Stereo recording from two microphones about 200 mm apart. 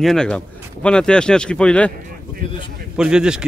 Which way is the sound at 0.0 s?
5° left (ahead or behind).